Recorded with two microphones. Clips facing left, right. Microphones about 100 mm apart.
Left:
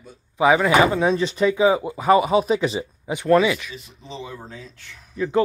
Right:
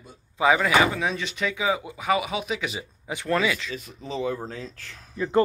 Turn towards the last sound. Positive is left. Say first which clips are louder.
# left 1 dB
turn(degrees=0)  # may be behind; listen again after turning